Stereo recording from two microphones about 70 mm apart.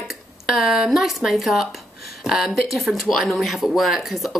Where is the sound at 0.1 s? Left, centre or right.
Centre.